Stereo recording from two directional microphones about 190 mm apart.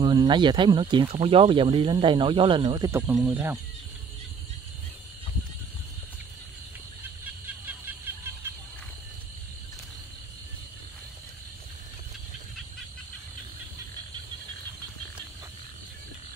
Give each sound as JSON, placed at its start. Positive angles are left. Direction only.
{"t": 0.0, "sound": "speech", "side_deg": -25}
{"t": 3.3, "sound": "speech", "side_deg": -10}
{"t": 7.4, "sound": "music", "side_deg": -10}